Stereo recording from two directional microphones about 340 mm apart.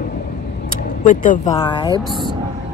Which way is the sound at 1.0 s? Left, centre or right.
Left.